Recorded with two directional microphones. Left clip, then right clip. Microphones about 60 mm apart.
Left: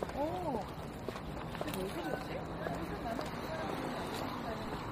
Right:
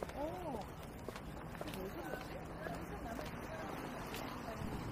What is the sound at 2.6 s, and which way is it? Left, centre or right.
Vehicle, right.